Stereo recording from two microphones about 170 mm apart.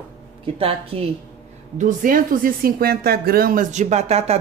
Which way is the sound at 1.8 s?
50° right (ahead or behind).